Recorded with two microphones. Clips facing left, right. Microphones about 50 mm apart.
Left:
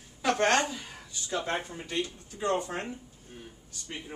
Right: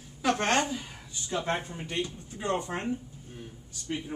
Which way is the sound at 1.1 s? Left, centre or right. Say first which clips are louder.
Right 1 dB; right.